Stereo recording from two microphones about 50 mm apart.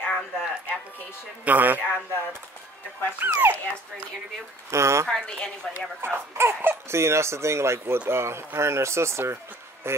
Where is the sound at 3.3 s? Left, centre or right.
Right.